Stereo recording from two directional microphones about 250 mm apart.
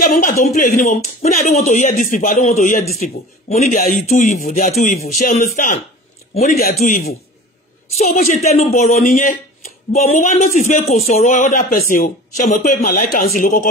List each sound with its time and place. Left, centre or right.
0.0 s a man's voice: left
10.8 s speech: centre
11.1 s a man's voice: left